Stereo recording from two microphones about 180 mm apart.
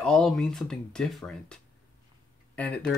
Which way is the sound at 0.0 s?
5° left (ahead or behind).